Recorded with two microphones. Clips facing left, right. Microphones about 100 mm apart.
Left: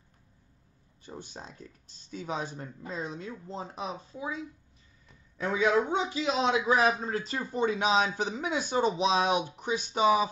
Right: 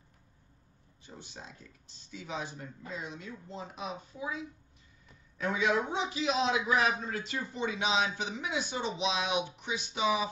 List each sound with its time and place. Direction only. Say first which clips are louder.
1.0 s speech: left 5 dB; 45° left (ahead or behind); by 4.4 s 30° left (ahead or behind)
5.4 s speech: left 4 dB; 30° left (ahead or behind)